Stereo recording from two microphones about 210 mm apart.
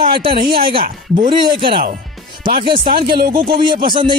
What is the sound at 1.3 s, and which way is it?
Speech, 25° right (ahead or behind).